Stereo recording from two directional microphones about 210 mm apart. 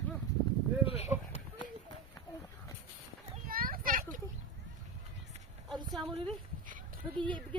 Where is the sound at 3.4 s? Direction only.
45° right (ahead or behind).